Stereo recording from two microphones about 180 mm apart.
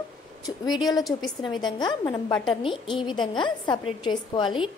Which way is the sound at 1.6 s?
25° left (ahead or behind).